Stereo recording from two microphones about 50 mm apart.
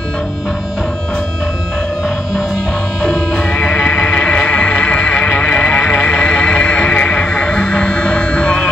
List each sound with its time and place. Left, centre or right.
4.1 s music: centre